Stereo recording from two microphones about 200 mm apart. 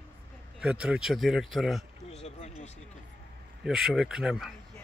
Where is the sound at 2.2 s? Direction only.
30° left (ahead or behind).